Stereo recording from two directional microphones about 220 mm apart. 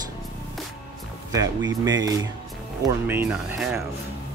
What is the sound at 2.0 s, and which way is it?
Speech, 15° right (ahead or behind).